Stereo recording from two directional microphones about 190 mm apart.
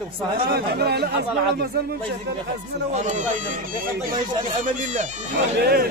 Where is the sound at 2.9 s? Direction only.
40° right (ahead or behind).